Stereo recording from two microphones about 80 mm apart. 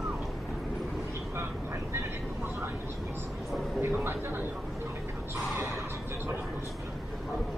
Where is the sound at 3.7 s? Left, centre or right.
Right.